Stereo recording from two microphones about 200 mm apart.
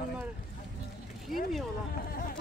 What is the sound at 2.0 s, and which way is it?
Speech, 45° left (ahead or behind).